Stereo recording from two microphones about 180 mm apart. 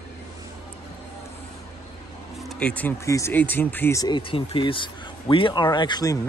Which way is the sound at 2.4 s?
5° left (ahead or behind).